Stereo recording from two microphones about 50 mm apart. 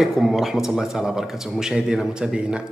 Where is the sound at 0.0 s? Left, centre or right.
Centre.